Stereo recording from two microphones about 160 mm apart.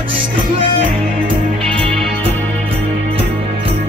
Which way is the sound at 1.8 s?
5° left (ahead or behind).